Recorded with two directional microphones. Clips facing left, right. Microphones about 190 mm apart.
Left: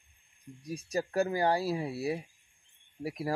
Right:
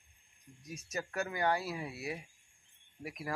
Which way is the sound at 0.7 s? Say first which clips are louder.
Left 8 dB; 35° left (ahead or behind).